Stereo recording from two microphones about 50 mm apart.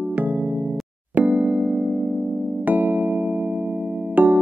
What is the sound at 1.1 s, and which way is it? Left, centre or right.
Music, right.